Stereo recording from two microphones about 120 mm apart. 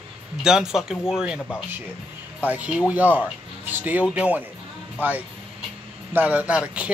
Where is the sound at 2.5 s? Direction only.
10° right (ahead or behind).